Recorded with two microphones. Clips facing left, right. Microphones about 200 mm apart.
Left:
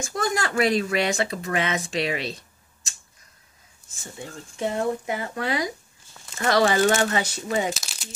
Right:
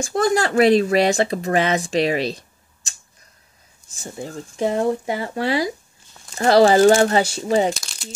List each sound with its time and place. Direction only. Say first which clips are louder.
0.0 s speech: right 7 dB; 30° right (ahead or behind)
4.0 s speech: right 7 dB; 35° right (ahead or behind)
7.7 s speech: right 2 dB; centre (ahead or behind)